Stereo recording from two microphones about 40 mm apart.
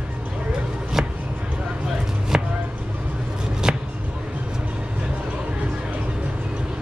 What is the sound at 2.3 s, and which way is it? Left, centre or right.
Chopping, centre.